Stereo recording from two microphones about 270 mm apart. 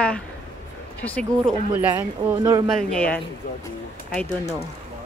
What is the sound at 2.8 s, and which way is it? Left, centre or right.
Speech, centre.